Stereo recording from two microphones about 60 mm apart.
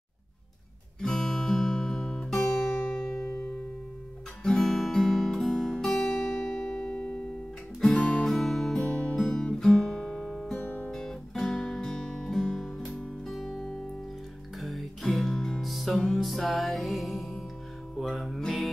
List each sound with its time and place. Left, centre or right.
1.0 s guitar: centre
4.4 s guitar: centre
7.8 s music: centre
9.1 s guitar: centre
10.6 s guitar: left
10.9 s music: centre